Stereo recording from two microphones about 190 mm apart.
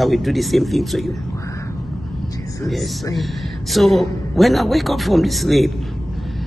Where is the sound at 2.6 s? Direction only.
Centre (ahead or behind).